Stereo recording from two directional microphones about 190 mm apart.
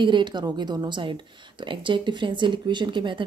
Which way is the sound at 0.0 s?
25° right (ahead or behind).